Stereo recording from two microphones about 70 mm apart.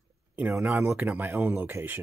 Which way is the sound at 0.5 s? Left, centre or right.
Right.